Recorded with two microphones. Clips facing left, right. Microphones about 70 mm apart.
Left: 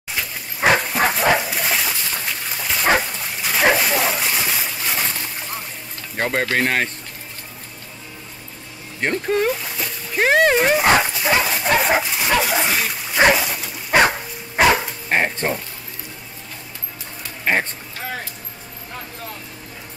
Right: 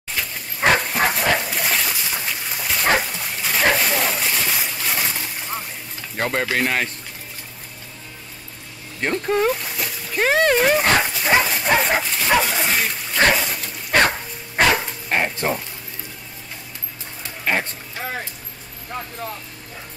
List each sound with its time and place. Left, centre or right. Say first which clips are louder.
0.1 s dog: left 1 dB; centre
2.0 s dog: even; centre
6.1 s speech: left 1 dB; centre
9.0 s speech: even; centre
10.1 s splash: left 2 dB; centre
11.0 s dog: even; centre
12.4 s speech: left 1 dB; centre
13.3 s dog: left 2 dB; centre
14.6 s bow-wow: left 2 dB; centre
15.0 s frying: left 1 dB; centre